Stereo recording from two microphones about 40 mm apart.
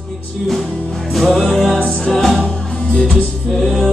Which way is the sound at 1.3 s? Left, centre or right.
Centre.